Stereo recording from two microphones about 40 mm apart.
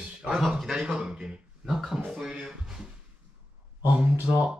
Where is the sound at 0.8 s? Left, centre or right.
Right.